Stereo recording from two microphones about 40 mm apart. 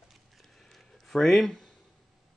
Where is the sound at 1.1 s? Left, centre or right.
Centre.